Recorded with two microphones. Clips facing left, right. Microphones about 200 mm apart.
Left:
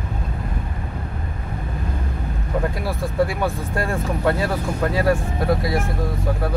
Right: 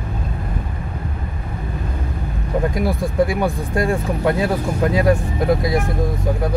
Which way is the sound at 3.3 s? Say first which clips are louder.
Right 4 dB; 15° right (ahead or behind).